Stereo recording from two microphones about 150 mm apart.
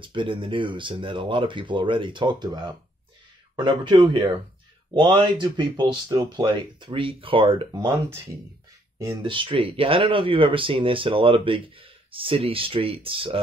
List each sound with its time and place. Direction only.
0.0 s speech: 35° right (ahead or behind)
8.9 s speech: 30° right (ahead or behind)